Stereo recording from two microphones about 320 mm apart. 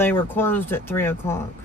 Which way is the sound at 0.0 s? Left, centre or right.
Centre.